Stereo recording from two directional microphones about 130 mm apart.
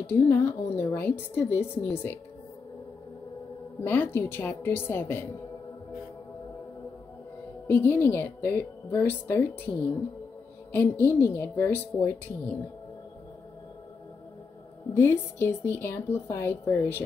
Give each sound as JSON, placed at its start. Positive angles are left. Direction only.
{"t": 0.0, "sound": "a woman's voice", "side_deg": 15}
{"t": 3.8, "sound": "a woman's voice", "side_deg": 15}
{"t": 7.6, "sound": "a woman's voice", "side_deg": 15}
{"t": 10.7, "sound": "a woman's voice", "side_deg": 15}
{"t": 15.0, "sound": "a woman's voice", "side_deg": 20}